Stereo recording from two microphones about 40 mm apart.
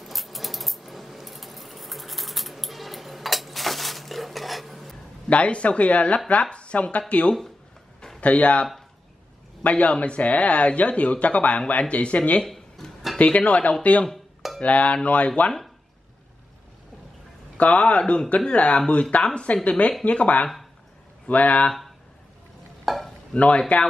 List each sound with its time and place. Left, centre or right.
0.0 s coin: centre
5.3 s speech: left
12.4 s a sound: centre
13.2 s speech: left
17.6 s speech: left
22.8 s stir: centre
23.3 s speech: left